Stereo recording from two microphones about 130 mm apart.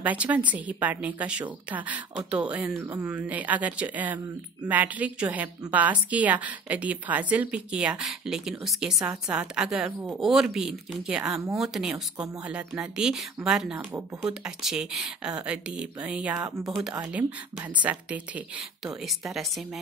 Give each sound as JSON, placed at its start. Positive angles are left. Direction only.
{"t": 0.0, "sound": "a woman's voice", "side_deg": -10}
{"t": 16.4, "sound": "speech", "side_deg": -25}
{"t": 17.7, "sound": "a woman's voice", "side_deg": -10}
{"t": 19.0, "sound": "speech", "side_deg": 0}